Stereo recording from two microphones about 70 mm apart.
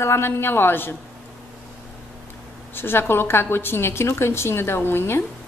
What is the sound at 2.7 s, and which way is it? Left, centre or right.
A woman's voice, left.